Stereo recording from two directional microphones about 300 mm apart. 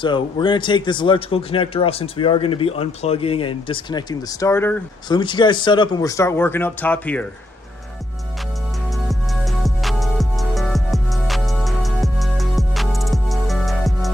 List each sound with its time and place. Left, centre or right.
0.0 s speech: centre
9.1 s music: centre